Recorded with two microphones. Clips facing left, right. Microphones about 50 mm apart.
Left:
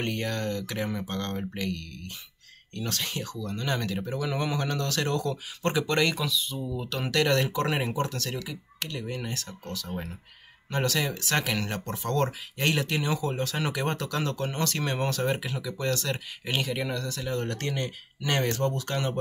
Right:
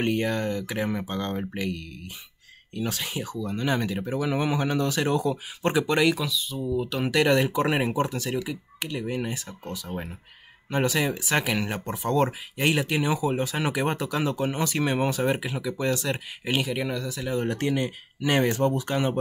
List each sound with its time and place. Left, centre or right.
0.0 s speech: centre